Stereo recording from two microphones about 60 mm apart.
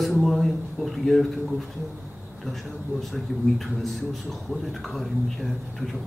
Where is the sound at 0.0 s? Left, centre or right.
Centre.